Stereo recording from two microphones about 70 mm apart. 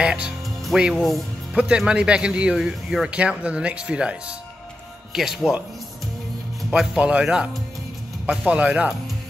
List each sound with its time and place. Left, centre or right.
0.0 s speech: centre
5.1 s speech: centre
6.7 s speech: centre